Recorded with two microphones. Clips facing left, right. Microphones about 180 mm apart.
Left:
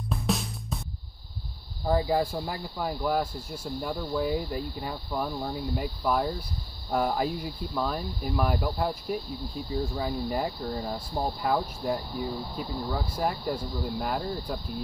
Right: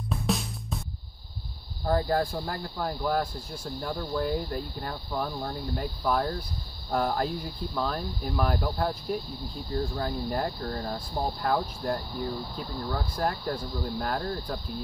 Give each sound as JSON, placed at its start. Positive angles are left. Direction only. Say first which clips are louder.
{"t": 0.1, "sound": "music", "louder": "even", "side_deg": 0}
{"t": 1.9, "sound": "speech", "louder": "left 1 dB", "side_deg": 5}